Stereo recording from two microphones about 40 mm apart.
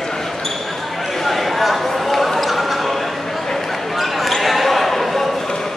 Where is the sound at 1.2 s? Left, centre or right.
Centre.